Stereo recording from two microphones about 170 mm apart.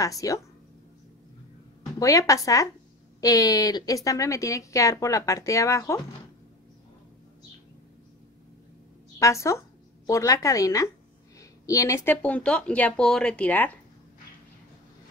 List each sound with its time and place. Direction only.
0.0 s speech: 20° left (ahead or behind)
2.0 s speech: 20° left (ahead or behind)
9.2 s speech: 15° left (ahead or behind)